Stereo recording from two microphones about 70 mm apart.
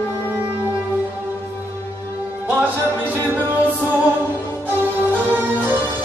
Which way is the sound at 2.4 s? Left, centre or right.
Right.